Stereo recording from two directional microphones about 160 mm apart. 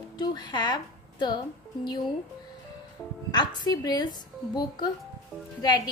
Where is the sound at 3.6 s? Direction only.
25° left (ahead or behind).